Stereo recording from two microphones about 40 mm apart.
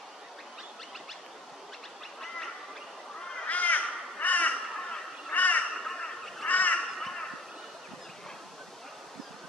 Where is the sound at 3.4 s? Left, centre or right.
Left.